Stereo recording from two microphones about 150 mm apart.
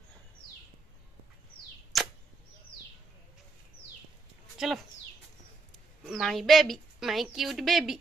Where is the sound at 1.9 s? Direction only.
Centre (ahead or behind).